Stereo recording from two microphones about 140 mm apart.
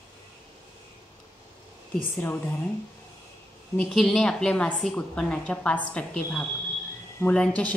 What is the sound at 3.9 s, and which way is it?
A woman's voice, centre (ahead or behind).